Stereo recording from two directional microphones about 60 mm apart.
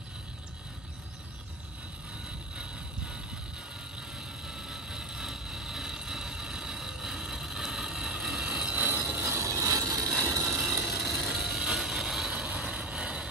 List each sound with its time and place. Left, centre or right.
2.2 s vehicle: centre
4.2 s vehicle: centre
8.5 s mechanisms: right
9.2 s a sound: right
10.2 s vehicle: right
10.5 s vehicle: centre